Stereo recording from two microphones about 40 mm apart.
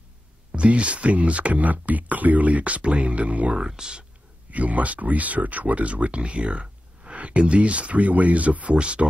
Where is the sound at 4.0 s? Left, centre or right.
Right.